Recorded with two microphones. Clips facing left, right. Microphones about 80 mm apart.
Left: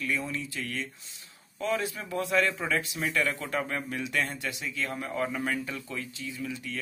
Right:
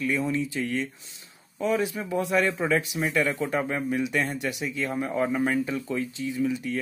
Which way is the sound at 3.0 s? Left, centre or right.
Centre.